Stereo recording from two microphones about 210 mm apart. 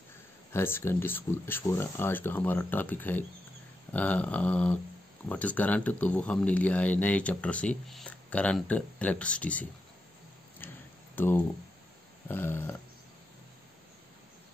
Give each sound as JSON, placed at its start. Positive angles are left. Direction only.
{"t": 0.5, "sound": "speech", "side_deg": 10}
{"t": 10.6, "sound": "a sound", "side_deg": 10}
{"t": 11.1, "sound": "speech", "side_deg": 10}